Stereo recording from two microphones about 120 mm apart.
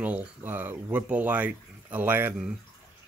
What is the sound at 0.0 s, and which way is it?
Speech, 15° right (ahead or behind).